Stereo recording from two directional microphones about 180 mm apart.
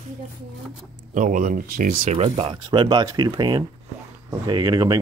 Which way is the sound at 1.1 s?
45° right (ahead or behind).